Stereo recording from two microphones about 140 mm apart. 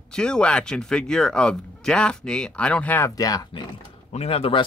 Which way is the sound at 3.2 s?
25° left (ahead or behind).